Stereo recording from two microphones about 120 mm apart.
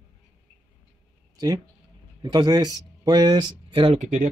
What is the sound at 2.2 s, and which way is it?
Speech, 35° right (ahead or behind).